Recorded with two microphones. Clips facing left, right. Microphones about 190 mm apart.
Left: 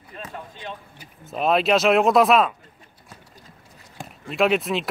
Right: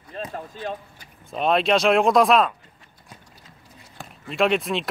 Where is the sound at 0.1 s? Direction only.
35° right (ahead or behind).